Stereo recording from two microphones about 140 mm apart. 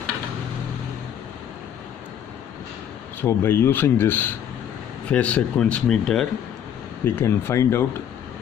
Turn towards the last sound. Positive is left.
turn(degrees=20)  # may be behind; listen again after turning